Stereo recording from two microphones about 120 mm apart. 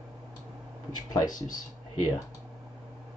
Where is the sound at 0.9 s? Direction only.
35° left (ahead or behind).